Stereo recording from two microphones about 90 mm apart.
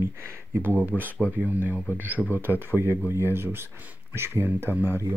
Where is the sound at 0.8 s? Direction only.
20° right (ahead or behind).